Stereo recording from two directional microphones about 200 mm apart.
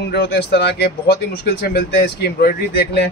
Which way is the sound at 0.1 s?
55° left (ahead or behind).